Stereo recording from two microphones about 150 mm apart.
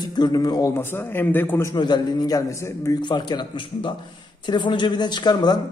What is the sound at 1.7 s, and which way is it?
A man's voice, 30° left (ahead or behind).